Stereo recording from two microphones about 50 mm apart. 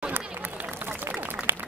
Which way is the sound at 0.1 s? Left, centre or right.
Right.